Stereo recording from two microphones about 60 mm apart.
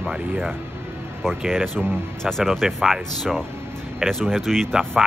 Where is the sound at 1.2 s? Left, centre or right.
Centre.